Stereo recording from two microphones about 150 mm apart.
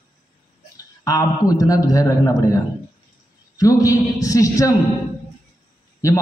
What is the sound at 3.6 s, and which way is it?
Speech, 25° left (ahead or behind).